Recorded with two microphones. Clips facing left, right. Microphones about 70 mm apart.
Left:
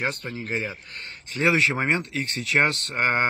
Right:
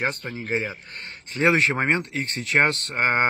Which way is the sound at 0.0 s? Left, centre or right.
Right.